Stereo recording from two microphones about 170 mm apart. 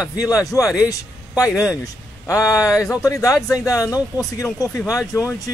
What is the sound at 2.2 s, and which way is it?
Speech, 20° left (ahead or behind).